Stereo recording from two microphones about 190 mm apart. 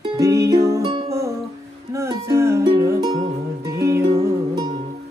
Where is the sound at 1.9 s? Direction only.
15° right (ahead or behind).